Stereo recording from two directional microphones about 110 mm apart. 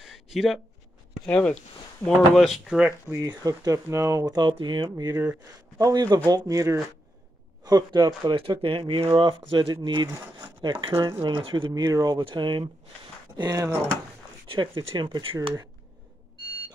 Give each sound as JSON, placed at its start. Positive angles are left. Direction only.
{"t": 0.0, "sound": "a sound", "side_deg": -5}
{"t": 1.2, "sound": "speech", "side_deg": 10}
{"t": 2.0, "sound": "speech", "side_deg": 0}
{"t": 3.2, "sound": "speech", "side_deg": -35}
{"t": 4.4, "sound": "speech", "side_deg": -45}
{"t": 7.6, "sound": "speech", "side_deg": -40}
{"t": 13.4, "sound": "speech", "side_deg": -35}
{"t": 14.9, "sound": "speech", "side_deg": -45}